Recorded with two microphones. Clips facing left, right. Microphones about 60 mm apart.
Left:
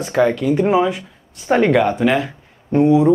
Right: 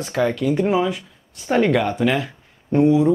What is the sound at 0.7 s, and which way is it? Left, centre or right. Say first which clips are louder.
Speech: left 4 dB; left.